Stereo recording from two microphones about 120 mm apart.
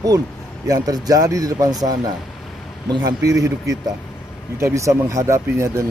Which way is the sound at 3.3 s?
30° right (ahead or behind).